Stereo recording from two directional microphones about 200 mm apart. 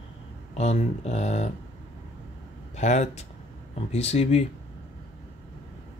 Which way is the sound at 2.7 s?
35° left (ahead or behind).